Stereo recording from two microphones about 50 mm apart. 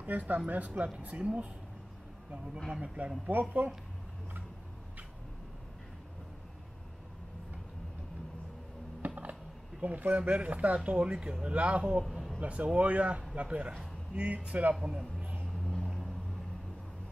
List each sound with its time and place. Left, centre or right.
0.0 s speech: right
3.3 s speech: right
9.0 s speech: right
12.0 s a sound: centre
12.4 s speech: right
14.8 s a man's voice: centre
15.6 s vehicle: centre